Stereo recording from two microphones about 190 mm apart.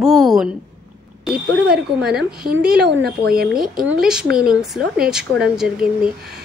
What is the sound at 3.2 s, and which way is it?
Speech, 55° right (ahead or behind).